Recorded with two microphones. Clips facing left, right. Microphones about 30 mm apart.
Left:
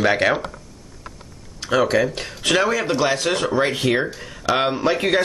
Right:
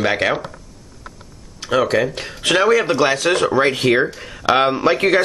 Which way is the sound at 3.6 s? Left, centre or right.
Right.